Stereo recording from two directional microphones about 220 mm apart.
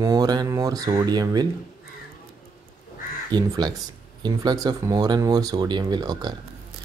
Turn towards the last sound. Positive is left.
turn(degrees=-20)  # may be behind; listen again after turning